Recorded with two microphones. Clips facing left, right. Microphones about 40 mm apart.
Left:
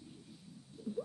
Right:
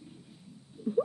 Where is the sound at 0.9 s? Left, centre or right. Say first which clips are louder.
Right 12 dB; right.